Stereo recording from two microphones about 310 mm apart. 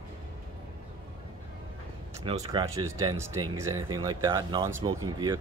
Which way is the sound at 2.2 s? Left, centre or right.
Centre.